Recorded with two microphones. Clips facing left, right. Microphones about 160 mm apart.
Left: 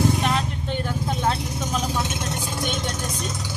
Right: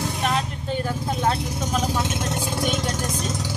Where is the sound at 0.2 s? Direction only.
5° right (ahead or behind).